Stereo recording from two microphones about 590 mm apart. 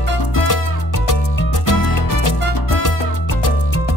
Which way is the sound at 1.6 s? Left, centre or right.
Left.